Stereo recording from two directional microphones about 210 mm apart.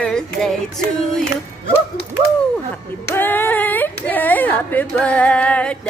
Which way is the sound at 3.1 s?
10° left (ahead or behind).